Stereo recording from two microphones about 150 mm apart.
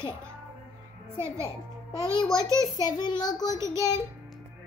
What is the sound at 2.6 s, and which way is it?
A child's voice, 25° left (ahead or behind).